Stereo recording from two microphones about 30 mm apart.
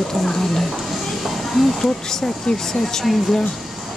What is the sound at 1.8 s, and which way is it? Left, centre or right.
Speech, centre.